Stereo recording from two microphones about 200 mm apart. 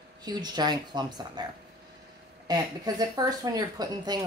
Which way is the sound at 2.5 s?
20° right (ahead or behind).